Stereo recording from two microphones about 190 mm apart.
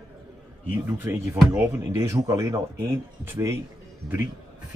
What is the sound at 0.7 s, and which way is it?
Speech, 10° right (ahead or behind).